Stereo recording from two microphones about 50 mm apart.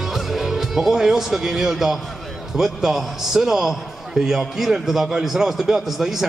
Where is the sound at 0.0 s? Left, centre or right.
Centre.